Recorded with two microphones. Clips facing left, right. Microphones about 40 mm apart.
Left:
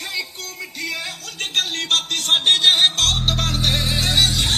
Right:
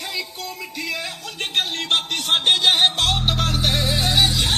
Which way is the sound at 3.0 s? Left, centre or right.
Centre.